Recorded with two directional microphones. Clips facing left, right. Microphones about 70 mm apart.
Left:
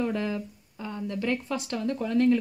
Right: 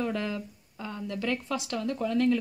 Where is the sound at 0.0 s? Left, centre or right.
Centre.